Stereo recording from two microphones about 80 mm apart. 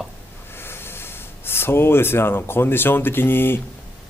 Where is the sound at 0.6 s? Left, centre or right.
Left.